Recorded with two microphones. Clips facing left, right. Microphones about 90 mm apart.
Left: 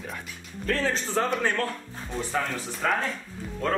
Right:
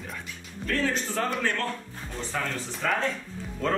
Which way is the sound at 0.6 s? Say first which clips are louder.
Left 1 dB; 30° left (ahead or behind).